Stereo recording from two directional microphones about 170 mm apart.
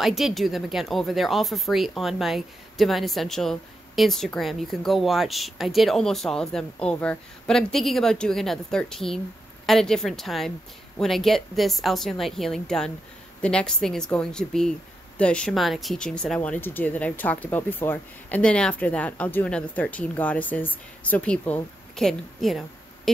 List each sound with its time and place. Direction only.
0.0 s speech: centre (ahead or behind)